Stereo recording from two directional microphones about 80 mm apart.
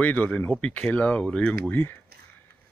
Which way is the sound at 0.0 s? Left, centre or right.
Centre.